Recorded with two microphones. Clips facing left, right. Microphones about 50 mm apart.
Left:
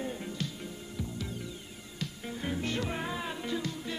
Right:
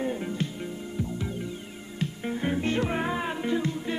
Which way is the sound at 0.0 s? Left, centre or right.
Right.